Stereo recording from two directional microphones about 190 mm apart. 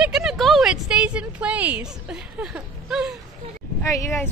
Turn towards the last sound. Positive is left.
turn(degrees=15)  # may be behind; listen again after turning